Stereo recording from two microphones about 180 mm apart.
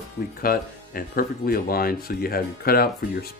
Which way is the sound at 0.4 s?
55° left (ahead or behind).